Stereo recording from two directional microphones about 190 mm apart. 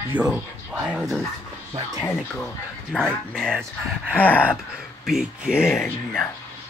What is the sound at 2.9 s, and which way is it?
A woman's voice, 5° left (ahead or behind).